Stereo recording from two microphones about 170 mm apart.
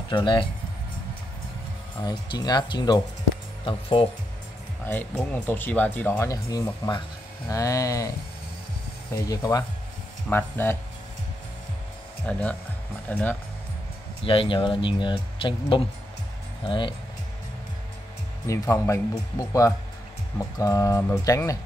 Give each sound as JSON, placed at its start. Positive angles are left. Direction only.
{"t": 0.1, "sound": "speech", "side_deg": 30}
{"t": 2.0, "sound": "speech", "side_deg": 25}
{"t": 4.8, "sound": "speech", "side_deg": 10}
{"t": 9.1, "sound": "speech", "side_deg": 20}
{"t": 12.3, "sound": "speech", "side_deg": 10}
{"t": 14.2, "sound": "speech", "side_deg": 30}
{"t": 18.5, "sound": "speech", "side_deg": 15}